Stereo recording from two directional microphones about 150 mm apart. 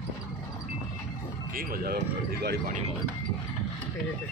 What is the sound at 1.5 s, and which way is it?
Speech, 75° right (ahead or behind).